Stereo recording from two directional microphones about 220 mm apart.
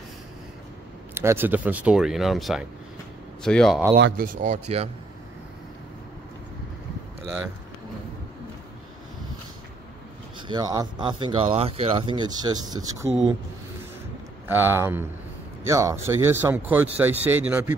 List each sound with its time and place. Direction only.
1.1 s speech: 10° right (ahead or behind)
3.9 s speech: 45° right (ahead or behind)
10.5 s speech: 15° right (ahead or behind)
14.5 s speech: 10° right (ahead or behind)